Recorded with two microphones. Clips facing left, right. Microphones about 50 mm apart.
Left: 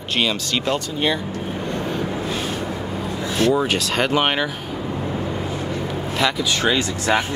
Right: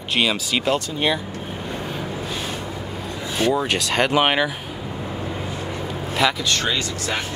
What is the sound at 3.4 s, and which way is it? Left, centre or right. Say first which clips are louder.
Speech: left 2 dB; centre.